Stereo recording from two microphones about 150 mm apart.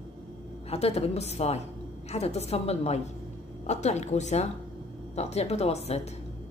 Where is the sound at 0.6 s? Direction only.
45° left (ahead or behind).